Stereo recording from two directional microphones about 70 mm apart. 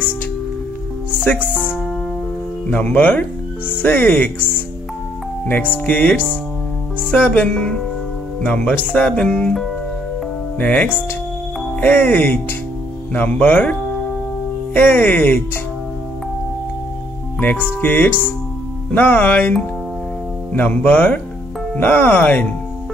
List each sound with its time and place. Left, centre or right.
2.7 s speech: left
10.6 s speech: left
17.4 s speech: left
20.5 s speech: left